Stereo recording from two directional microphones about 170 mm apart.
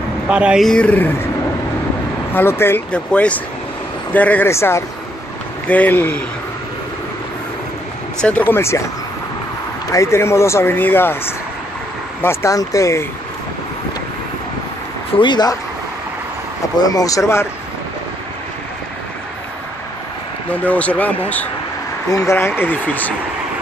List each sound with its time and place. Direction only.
0.3 s speech: 5° right (ahead or behind); by 1.3 s 10° left (ahead or behind)
2.3 s speech: 15° left (ahead or behind)
8.2 s speech: 10° left (ahead or behind)
9.9 s speech: 15° left (ahead or behind)
12.2 s speech: 15° left (ahead or behind)
15.1 s speech: 25° left (ahead or behind)
16.7 s speech: 20° left (ahead or behind)
20.5 s speech: 10° left (ahead or behind)